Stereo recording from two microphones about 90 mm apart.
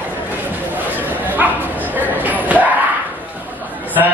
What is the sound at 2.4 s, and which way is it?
Chatter, 15° right (ahead or behind).